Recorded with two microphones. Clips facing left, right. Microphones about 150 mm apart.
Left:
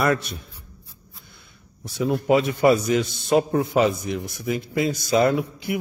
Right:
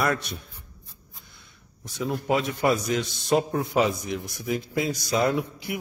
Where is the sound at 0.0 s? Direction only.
Centre (ahead or behind).